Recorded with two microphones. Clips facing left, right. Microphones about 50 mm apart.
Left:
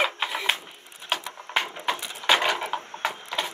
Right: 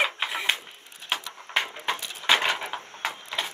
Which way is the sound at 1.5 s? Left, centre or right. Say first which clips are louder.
Left 1 dB; centre.